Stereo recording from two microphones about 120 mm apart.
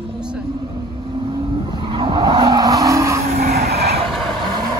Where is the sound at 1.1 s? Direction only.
45° right (ahead or behind); by 3.2 s 25° right (ahead or behind).